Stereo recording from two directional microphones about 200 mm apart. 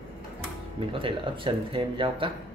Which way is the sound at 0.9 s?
25° right (ahead or behind).